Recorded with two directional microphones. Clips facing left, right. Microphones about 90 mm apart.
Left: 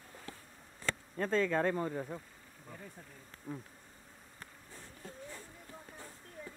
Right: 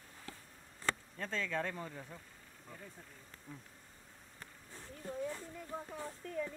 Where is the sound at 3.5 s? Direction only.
50° left (ahead or behind).